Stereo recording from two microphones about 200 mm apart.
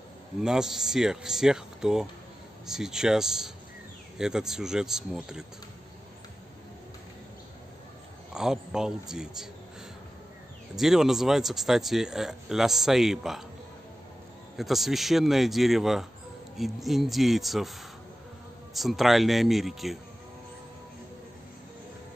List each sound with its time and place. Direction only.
0.4 s speech: 5° right (ahead or behind)
8.3 s speech: 5° right (ahead or behind)
10.8 s speech: centre (ahead or behind)
14.6 s speech: centre (ahead or behind)